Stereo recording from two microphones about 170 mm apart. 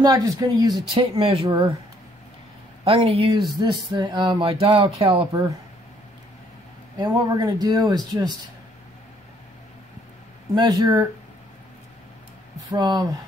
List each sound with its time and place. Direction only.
0.0 s speech: 20° right (ahead or behind)
2.8 s speech: 30° right (ahead or behind)
7.0 s speech: 20° right (ahead or behind)
10.5 s speech: 20° right (ahead or behind)
12.7 s speech: 25° right (ahead or behind)